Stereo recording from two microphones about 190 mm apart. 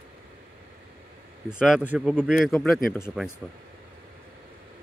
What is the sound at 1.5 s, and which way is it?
Speech, 5° right (ahead or behind).